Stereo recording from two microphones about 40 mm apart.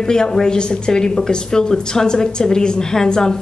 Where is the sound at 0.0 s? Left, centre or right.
Centre.